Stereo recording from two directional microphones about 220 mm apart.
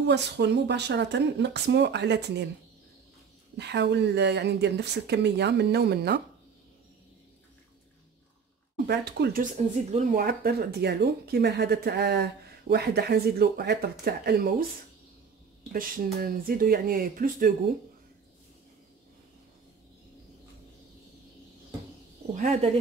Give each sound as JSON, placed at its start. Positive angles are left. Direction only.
{"t": 0.0, "sound": "speech", "side_deg": -50}
{"t": 3.5, "sound": "speech", "side_deg": -50}
{"t": 8.8, "sound": "speech", "side_deg": -50}
{"t": 9.6, "sound": "speech", "side_deg": -30}
{"t": 15.7, "sound": "speech", "side_deg": -40}
{"t": 22.3, "sound": "speech", "side_deg": -30}